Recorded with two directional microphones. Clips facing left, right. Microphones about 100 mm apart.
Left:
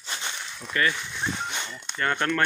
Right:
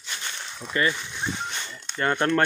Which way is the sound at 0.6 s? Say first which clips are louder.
Right 1 dB; 20° right (ahead or behind).